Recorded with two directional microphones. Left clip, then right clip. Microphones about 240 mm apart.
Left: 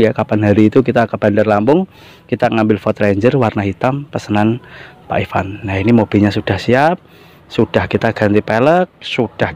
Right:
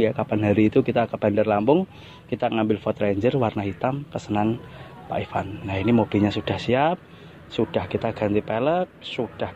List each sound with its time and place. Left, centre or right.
0.0 s speech: left